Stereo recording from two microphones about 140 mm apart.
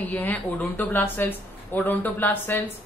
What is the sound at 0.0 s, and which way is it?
Speech, 10° left (ahead or behind).